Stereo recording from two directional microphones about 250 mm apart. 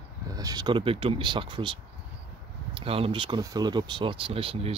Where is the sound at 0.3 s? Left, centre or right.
Centre.